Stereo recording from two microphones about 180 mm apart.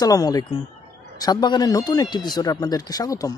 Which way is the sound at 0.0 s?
20° left (ahead or behind).